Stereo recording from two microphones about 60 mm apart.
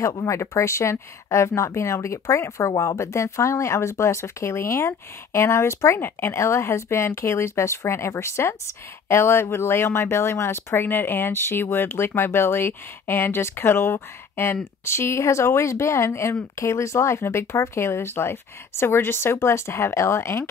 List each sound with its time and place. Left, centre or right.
0.0 s speech: left
3.0 s speech: left
5.9 s speech: left